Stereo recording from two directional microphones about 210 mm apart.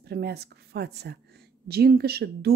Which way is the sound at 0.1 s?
50° right (ahead or behind).